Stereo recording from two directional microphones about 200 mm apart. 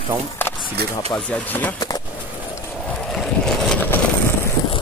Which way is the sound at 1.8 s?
20° left (ahead or behind).